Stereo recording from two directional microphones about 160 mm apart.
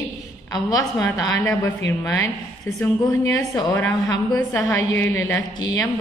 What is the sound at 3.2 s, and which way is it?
A woman's voice, 20° left (ahead or behind).